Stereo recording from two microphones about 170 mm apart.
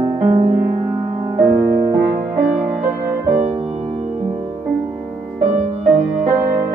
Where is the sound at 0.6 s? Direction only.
15° right (ahead or behind).